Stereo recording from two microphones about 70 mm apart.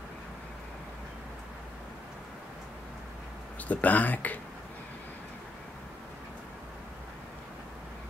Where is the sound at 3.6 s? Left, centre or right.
Left.